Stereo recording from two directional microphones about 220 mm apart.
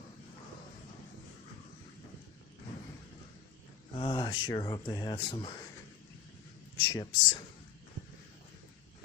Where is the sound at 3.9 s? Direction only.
20° left (ahead or behind).